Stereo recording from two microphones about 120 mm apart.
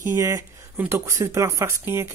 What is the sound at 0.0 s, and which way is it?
Speech, 25° right (ahead or behind).